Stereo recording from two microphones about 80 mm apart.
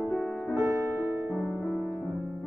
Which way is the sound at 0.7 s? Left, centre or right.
Right.